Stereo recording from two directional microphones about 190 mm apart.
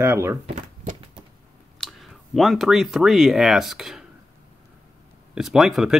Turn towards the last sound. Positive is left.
turn(degrees=0)  # may be behind; listen again after turning